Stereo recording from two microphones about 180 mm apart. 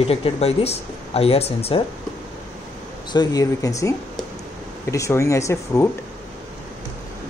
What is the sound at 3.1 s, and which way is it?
Speech, 20° left (ahead or behind).